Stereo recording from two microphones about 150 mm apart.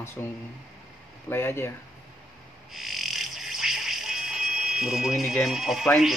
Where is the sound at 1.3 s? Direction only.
15° left (ahead or behind).